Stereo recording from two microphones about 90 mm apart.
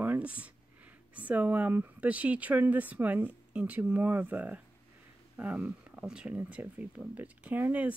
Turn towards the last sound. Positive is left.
turn(degrees=-20)  # may be behind; listen again after turning